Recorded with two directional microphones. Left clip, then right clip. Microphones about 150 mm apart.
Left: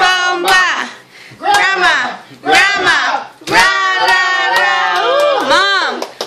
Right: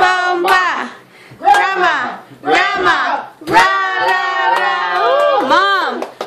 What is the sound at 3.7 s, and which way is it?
Tabla, 10° right (ahead or behind).